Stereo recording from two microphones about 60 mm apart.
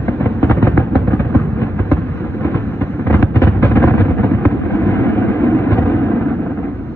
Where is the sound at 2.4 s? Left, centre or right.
Left.